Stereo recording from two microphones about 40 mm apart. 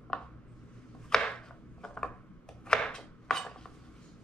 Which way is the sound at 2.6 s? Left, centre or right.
Centre.